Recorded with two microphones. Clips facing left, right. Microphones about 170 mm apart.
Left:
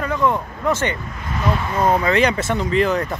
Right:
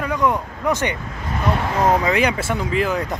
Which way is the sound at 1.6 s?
80° right.